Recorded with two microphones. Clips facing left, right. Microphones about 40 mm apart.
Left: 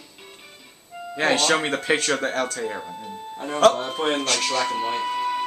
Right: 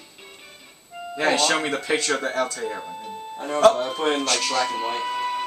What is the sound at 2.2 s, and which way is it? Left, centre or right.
Speech, left.